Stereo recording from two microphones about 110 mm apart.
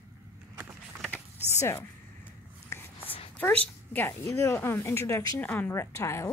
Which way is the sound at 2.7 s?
25° left (ahead or behind).